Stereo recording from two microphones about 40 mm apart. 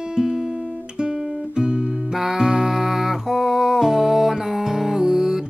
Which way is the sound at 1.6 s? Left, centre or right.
Right.